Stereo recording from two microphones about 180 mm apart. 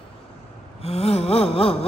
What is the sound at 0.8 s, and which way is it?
Gasp, 35° left (ahead or behind).